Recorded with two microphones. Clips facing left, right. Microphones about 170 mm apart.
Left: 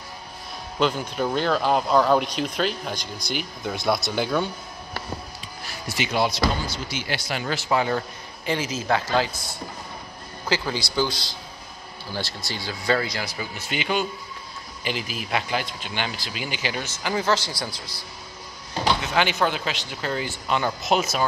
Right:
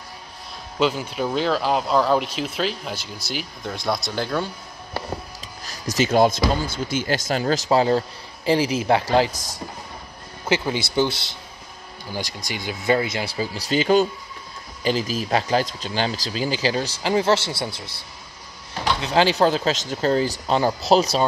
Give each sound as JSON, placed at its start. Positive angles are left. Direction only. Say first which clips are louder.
{"t": 0.7, "sound": "speech", "louder": "right 1 dB", "side_deg": -5}
{"t": 5.7, "sound": "speech", "louder": "right 7 dB", "side_deg": -40}
{"t": 10.5, "sound": "speech", "louder": "right 4 dB", "side_deg": -20}
{"t": 18.9, "sound": "speech", "louder": "right 5 dB", "side_deg": -35}